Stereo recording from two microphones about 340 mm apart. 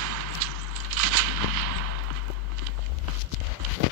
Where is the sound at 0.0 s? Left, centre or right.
Right.